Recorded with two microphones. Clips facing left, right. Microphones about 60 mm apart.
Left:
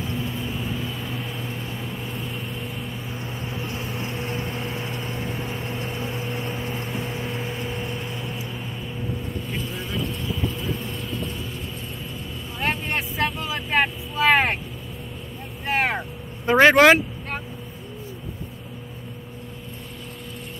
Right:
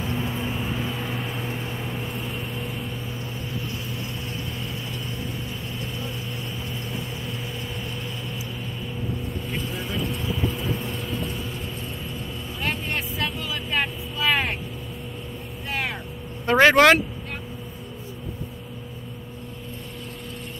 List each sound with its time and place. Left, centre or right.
0.0 s vehicle: right
1.0 s vehicle: centre
3.5 s vehicle: left
9.5 s vehicle: centre
12.5 s vehicle: left
15.6 s vehicle: left
16.4 s vehicle: centre